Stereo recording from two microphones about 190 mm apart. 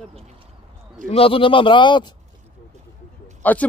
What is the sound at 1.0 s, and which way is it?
A man's voice, 30° left (ahead or behind).